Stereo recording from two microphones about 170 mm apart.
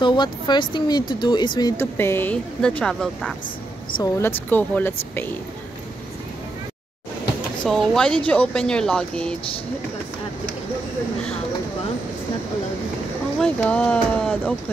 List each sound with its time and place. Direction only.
0.0 s speech: 25° left (ahead or behind)
1.8 s speech: 15° left (ahead or behind)
4.5 s speech: 10° left (ahead or behind)
7.6 s speech: 5° left (ahead or behind)
13.4 s speech: 10° left (ahead or behind)